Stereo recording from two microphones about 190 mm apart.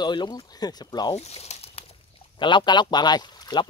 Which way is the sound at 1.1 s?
35° left (ahead or behind).